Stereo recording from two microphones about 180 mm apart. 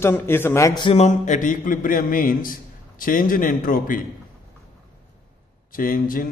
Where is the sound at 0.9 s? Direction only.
40° left (ahead or behind).